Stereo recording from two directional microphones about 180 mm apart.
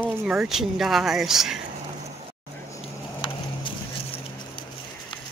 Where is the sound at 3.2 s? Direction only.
25° left (ahead or behind).